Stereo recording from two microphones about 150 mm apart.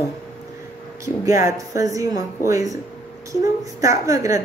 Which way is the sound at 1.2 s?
20° right (ahead or behind).